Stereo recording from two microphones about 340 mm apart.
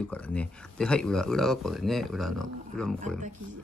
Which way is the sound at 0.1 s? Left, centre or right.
Centre.